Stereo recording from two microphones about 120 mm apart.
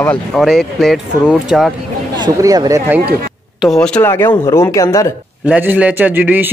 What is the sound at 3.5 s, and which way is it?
Speech, 5° left (ahead or behind).